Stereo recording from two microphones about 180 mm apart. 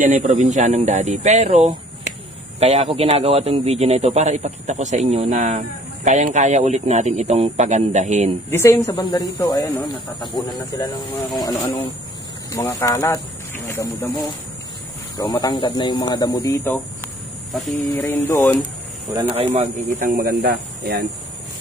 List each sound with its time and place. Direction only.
0.0 s a man's voice: 40° right (ahead or behind)
8.5 s speech: 15° left (ahead or behind)
11.4 s speech: 20° left (ahead or behind)
17.5 s speech: centre (ahead or behind)
17.8 s speech: 10° left (ahead or behind)
19.2 s a man's voice: 30° right (ahead or behind)
20.2 s speech: 55° right (ahead or behind)